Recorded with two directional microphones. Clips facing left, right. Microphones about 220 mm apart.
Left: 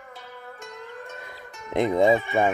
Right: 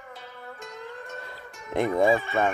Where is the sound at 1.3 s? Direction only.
20° left (ahead or behind).